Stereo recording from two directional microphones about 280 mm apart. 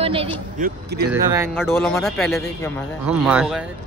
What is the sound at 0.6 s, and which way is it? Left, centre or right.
Speech, right.